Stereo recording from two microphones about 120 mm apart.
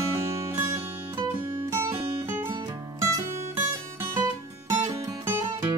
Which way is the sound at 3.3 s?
20° right (ahead or behind).